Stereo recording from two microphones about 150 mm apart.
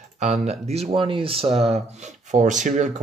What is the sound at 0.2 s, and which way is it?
Speech, 50° right (ahead or behind).